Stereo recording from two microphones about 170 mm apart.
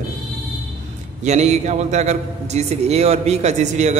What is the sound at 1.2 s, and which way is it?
A man's voice, 40° right (ahead or behind).